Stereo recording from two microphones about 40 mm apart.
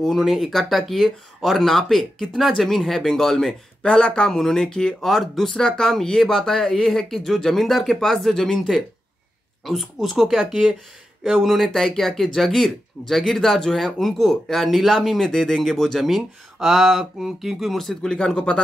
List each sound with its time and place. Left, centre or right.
0.1 s speech: centre
0.5 s speech: centre
3.8 s speech: left
4.3 s speech: centre
5.0 s speech: centre
5.6 s speech: centre
8.5 s speech: centre
15.1 s speech: centre
16.2 s speech: centre
18.0 s speech: left